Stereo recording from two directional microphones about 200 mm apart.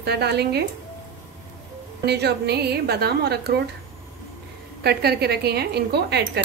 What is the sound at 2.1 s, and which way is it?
Speech, 55° right (ahead or behind).